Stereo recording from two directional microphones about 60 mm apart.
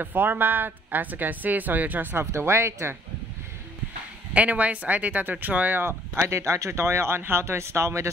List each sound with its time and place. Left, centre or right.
0.0 s speech: right
2.1 s speech: right
4.3 s speech: right
5.8 s speech: right